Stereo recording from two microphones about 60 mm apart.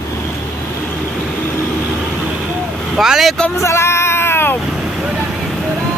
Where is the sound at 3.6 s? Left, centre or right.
Left.